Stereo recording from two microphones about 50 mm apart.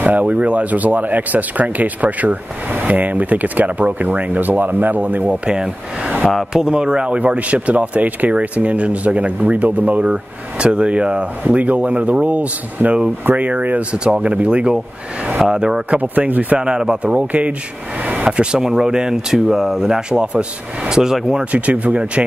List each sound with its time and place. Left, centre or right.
0.0 s speech: right
6.5 s speech: centre; by 10.0 s right
10.0 s speech: centre
15.3 s speech: centre
15.9 s speech: right
16.5 s speech: centre
17.0 s speech: right
21.0 s speech: centre
21.5 s speech: right